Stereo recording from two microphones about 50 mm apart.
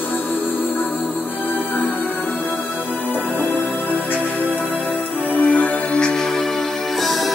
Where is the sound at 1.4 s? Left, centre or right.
Left.